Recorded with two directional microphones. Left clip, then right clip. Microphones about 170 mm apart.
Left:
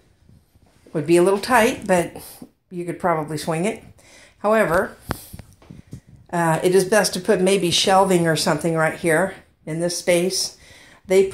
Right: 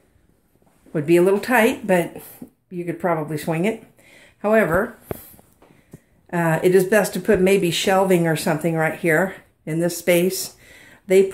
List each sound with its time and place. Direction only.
0.9 s speech: 10° right (ahead or behind)
6.3 s speech: 10° right (ahead or behind)